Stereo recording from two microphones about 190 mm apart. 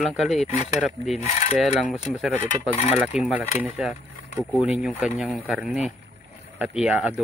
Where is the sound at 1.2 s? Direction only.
35° left (ahead or behind).